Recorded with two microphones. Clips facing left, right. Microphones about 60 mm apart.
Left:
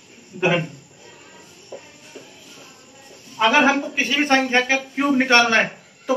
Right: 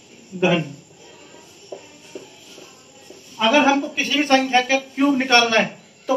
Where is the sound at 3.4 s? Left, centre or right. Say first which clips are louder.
Even; left.